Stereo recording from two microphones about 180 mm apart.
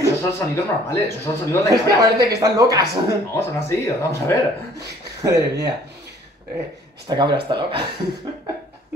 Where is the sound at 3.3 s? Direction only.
15° left (ahead or behind).